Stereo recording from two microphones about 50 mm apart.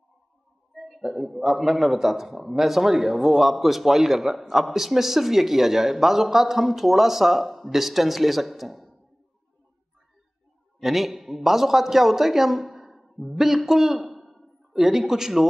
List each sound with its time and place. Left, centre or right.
0.7 s a sound: centre
1.3 s a man's voice: centre
10.8 s a man's voice: centre